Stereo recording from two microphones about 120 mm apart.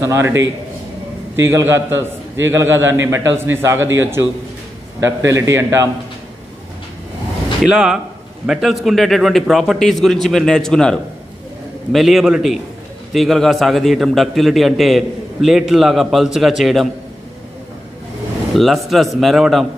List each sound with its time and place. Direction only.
0.0 s a man's voice: 20° right (ahead or behind)
5.3 s a man's voice: 20° right (ahead or behind)
7.6 s a man's voice: 5° right (ahead or behind)
18.5 s a man's voice: centre (ahead or behind)